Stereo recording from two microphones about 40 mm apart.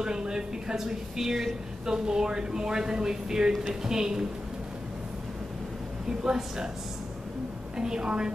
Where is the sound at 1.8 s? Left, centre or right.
Centre.